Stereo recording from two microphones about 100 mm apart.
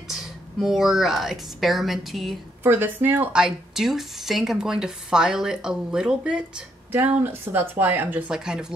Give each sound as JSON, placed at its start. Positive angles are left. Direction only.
{"t": 0.1, "sound": "speech", "side_deg": -5}
{"t": 2.6, "sound": "speech", "side_deg": -20}
{"t": 3.3, "sound": "a woman's voice", "side_deg": -5}
{"t": 6.9, "sound": "speech", "side_deg": -20}